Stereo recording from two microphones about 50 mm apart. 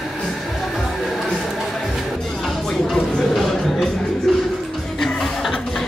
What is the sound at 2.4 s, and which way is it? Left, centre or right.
Music, centre.